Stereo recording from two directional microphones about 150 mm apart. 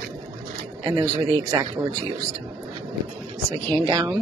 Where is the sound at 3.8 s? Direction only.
25° right (ahead or behind).